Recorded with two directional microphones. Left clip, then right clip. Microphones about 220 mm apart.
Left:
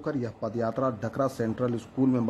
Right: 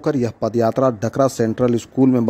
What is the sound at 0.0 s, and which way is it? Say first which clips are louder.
Speech: right 12 dB; 35° right (ahead or behind).